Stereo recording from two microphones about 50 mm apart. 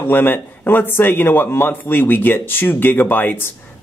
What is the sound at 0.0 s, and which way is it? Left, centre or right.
Speech, left.